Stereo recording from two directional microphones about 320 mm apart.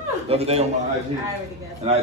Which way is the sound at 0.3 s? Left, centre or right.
Centre.